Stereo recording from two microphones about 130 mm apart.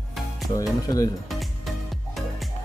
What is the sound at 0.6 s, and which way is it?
Speech, 25° left (ahead or behind).